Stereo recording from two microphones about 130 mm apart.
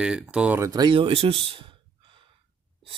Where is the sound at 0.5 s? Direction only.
25° right (ahead or behind).